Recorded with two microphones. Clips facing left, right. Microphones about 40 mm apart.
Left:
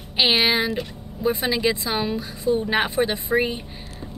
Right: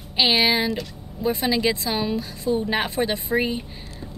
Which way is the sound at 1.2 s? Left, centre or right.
Centre.